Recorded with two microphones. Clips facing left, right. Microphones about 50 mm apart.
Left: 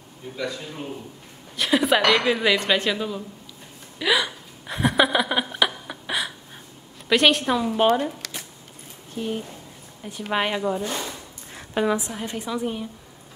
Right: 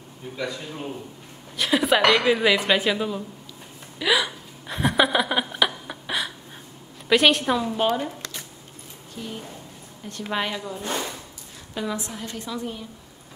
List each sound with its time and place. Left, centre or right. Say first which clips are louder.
0.4 s a woman's voice: even; centre
4.0 s hiccup: even; centre
7.1 s a woman's voice: even; centre
7.7 s speech: left 4 dB; centre
10.3 s a woman's voice: left 5 dB; left